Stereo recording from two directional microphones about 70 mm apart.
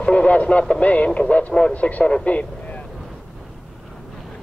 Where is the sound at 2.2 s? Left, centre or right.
Centre.